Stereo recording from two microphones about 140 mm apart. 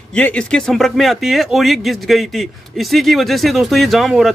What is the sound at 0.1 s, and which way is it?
Speech, 10° left (ahead or behind).